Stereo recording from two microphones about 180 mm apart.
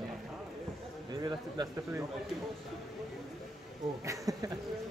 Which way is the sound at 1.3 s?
20° right (ahead or behind).